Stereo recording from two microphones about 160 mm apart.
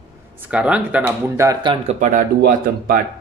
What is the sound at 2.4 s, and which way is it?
Speech, 65° right (ahead or behind).